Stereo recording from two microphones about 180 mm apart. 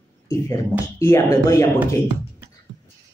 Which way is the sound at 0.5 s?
15° left (ahead or behind).